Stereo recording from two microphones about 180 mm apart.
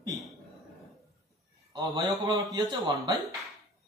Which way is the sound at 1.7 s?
25° right (ahead or behind).